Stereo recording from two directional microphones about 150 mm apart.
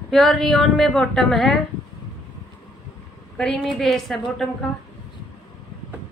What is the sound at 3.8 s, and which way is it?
Speech, centre (ahead or behind).